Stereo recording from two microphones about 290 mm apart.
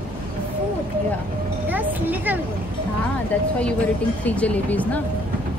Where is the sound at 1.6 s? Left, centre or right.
Centre.